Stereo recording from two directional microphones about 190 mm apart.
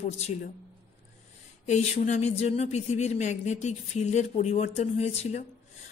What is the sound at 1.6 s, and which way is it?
A woman's voice, 35° left (ahead or behind).